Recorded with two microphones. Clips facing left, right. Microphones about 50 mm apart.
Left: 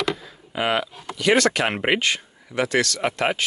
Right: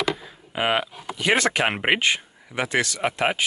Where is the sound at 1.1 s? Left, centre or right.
Centre.